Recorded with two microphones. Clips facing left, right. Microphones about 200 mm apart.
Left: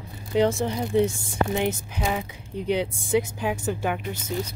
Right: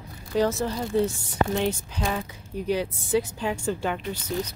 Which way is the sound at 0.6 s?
15° left (ahead or behind).